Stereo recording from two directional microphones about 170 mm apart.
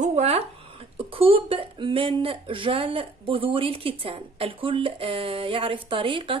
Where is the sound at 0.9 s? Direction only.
35° right (ahead or behind).